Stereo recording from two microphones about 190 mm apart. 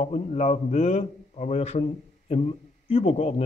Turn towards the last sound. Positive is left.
turn(degrees=30)  # may be behind; listen again after turning